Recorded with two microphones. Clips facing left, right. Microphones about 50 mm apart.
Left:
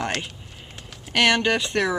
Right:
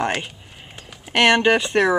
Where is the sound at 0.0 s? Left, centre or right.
Centre.